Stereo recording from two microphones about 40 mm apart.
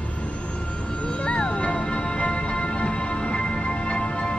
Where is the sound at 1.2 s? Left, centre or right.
Left.